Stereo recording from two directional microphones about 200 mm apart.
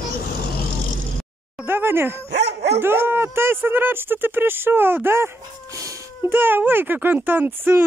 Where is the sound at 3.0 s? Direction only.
10° right (ahead or behind).